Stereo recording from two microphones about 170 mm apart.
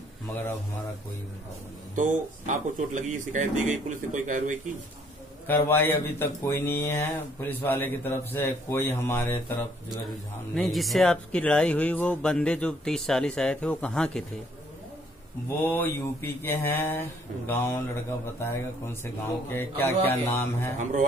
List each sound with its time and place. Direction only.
2.0 s speech: 45° right (ahead or behind)
5.5 s speech: 10° left (ahead or behind)
10.5 s speech: centre (ahead or behind)
15.6 s speech: 10° left (ahead or behind)